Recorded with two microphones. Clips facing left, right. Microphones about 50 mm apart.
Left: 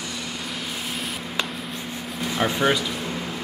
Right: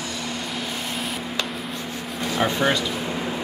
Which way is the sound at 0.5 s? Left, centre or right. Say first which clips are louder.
Right 2 dB; centre.